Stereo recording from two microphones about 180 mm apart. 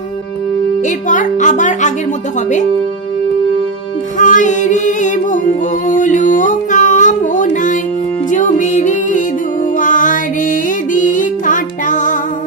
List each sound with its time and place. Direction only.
0.8 s speech: 45° left (ahead or behind)
4.2 s music: 45° left (ahead or behind)